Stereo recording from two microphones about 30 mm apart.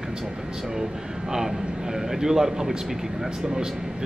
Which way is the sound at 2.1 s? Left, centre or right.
Centre.